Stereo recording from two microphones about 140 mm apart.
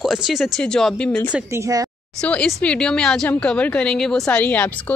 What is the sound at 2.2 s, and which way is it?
A woman's voice, 10° left (ahead or behind).